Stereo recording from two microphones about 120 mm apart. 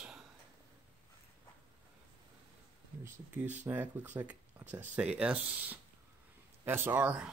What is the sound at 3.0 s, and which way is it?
Speech, 15° right (ahead or behind).